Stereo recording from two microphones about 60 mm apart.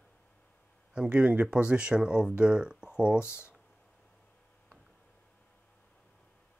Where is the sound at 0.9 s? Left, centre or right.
Centre.